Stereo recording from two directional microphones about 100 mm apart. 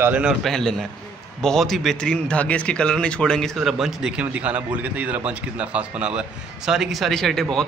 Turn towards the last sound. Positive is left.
turn(degrees=5)  # may be behind; listen again after turning